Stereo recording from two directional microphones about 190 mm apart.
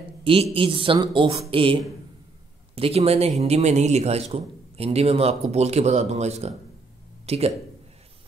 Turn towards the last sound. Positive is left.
turn(degrees=-35)  # may be behind; listen again after turning